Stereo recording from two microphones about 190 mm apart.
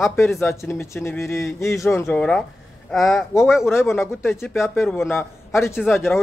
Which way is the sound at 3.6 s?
15° left (ahead or behind).